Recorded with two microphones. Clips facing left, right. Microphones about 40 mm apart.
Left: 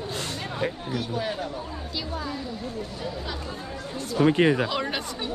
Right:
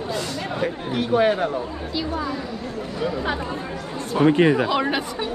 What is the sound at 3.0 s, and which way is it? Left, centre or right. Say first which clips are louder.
Speech: right 13 dB; right.